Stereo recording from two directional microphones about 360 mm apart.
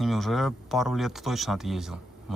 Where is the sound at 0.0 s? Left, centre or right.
Centre.